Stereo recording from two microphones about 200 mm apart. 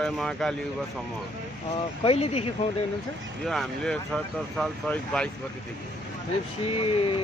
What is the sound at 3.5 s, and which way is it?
Speech, centre (ahead or behind).